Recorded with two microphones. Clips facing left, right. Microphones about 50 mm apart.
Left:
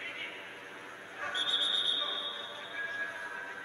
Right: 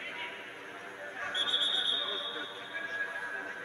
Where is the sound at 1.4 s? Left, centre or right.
Right.